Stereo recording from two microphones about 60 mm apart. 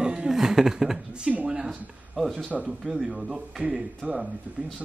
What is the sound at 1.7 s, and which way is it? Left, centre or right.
Speech, centre.